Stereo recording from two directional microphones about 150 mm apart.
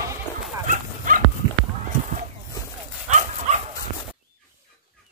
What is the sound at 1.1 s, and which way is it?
Dog, 65° right (ahead or behind).